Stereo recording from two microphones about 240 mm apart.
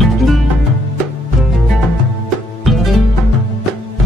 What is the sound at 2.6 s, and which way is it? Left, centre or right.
Music, centre.